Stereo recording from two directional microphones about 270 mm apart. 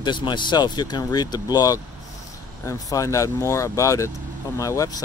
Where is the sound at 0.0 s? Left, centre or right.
Centre.